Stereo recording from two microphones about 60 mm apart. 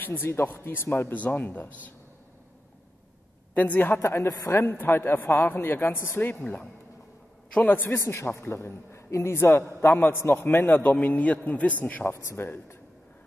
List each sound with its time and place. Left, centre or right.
0.0 s a man's voice: left
3.5 s a woman's voice: left
4.0 s a man's voice: left
6.4 s a woman's voice: centre
7.6 s a man's voice: left
8.0 s a man's voice: left